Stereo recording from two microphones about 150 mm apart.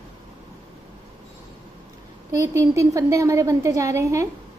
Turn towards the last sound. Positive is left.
turn(degrees=-20)  # may be behind; listen again after turning